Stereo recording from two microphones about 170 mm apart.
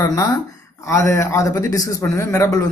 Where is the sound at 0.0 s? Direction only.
25° left (ahead or behind).